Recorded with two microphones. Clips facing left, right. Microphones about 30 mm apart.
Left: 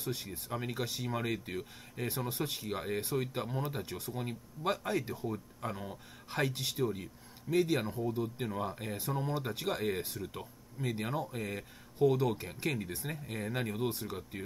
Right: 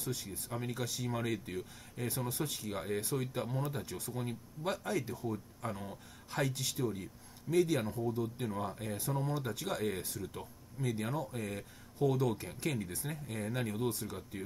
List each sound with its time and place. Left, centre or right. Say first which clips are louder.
0.0 s speech: left 1 dB; left
1.0 s speech: right 1 dB; centre
2.7 s speech: left 2 dB; centre
5.3 s speech: left 1 dB; centre
6.3 s speech: left 2 dB; left
9.3 s speech: left 2 dB; left